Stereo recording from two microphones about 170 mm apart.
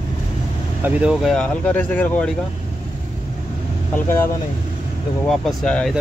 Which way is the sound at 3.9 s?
15° left (ahead or behind).